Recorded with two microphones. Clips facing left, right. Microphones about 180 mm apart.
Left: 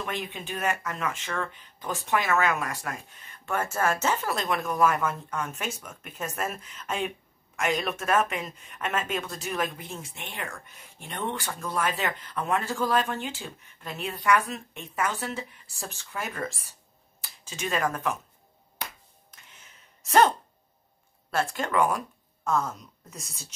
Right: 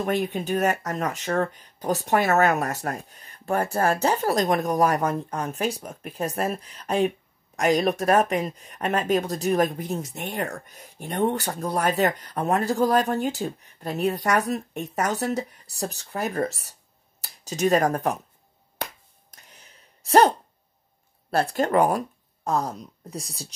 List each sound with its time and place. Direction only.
0.0 s speech: 40° right (ahead or behind)
19.3 s a sound: 40° right (ahead or behind)
21.3 s speech: 40° right (ahead or behind)